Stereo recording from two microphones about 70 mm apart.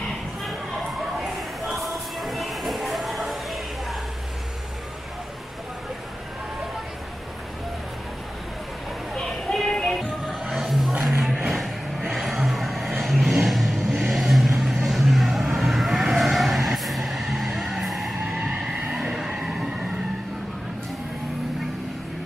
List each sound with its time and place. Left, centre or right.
1.2 s a sound: centre
9.1 s music: centre
13.0 s vehicle: centre